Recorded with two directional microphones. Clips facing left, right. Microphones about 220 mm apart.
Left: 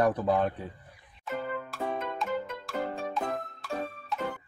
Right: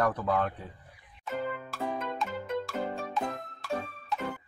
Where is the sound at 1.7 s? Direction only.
Centre (ahead or behind).